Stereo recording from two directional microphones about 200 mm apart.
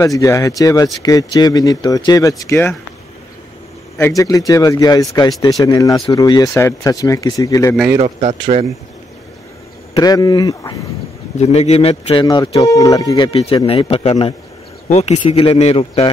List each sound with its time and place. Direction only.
0.0 s speech: 15° left (ahead or behind)
4.0 s speech: 15° left (ahead or behind)
8.0 s speech: 35° right (ahead or behind)
9.9 s speech: 20° left (ahead or behind)
11.3 s speech: 35° left (ahead or behind)